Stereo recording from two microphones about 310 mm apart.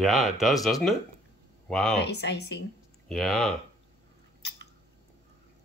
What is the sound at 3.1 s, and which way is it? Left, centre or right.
Speech, centre.